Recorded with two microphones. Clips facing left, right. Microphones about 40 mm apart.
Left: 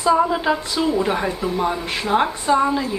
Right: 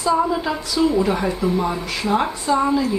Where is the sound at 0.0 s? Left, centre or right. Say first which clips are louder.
Left 2 dB; centre.